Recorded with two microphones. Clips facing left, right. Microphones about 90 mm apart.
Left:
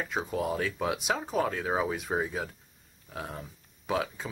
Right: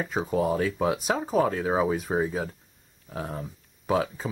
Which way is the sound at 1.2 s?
5° right (ahead or behind).